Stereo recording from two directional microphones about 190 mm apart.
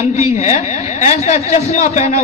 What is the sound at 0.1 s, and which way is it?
A woman's voice, 35° left (ahead or behind).